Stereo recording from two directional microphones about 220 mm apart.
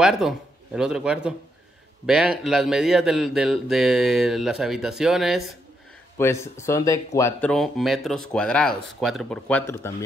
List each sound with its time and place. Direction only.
0.0 s speech: centre (ahead or behind)
6.1 s speech: 10° left (ahead or behind)